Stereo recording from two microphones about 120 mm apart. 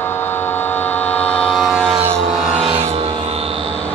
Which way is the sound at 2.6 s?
55° right (ahead or behind).